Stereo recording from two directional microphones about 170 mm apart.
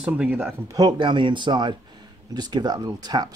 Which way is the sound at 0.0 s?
5° right (ahead or behind).